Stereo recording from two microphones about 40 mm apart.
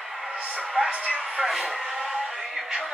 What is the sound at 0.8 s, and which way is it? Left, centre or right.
Speech, right.